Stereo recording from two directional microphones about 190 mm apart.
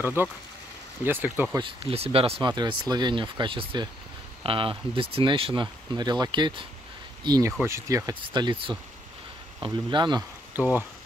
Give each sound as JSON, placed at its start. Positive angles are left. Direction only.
{"t": 0.0, "sound": "speech", "side_deg": -10}
{"t": 1.6, "sound": "speech", "side_deg": -30}